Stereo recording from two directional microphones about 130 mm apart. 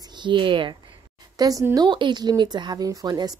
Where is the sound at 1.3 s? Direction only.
30° right (ahead or behind).